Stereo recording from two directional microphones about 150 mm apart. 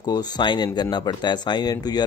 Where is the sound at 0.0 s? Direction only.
25° left (ahead or behind).